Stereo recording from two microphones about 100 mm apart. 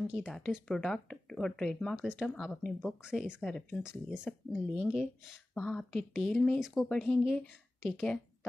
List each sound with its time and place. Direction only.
0.0 s speech: 5° right (ahead or behind)
0.3 s speech: 5° left (ahead or behind)
2.0 s speech: 10° right (ahead or behind)
2.2 s speech: centre (ahead or behind)
3.4 s speech: 5° left (ahead or behind)
4.7 s speech: 10° right (ahead or behind)
5.5 s speech: 10° left (ahead or behind)
7.1 s speech: 5° left (ahead or behind)